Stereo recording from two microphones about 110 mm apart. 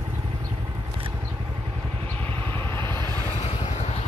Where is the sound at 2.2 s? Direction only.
20° left (ahead or behind).